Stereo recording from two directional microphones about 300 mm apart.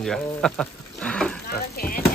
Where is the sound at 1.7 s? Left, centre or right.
Left.